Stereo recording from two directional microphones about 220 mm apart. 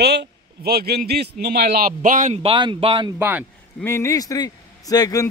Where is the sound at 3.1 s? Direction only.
10° right (ahead or behind).